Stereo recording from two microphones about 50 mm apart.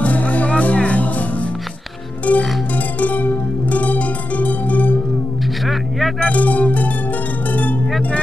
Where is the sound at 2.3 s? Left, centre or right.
Left.